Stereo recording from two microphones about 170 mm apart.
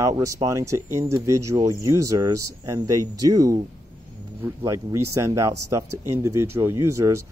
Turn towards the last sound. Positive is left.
turn(degrees=-15)  # may be behind; listen again after turning